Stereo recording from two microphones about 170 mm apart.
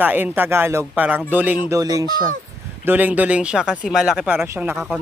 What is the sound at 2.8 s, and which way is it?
Speech, 10° right (ahead or behind).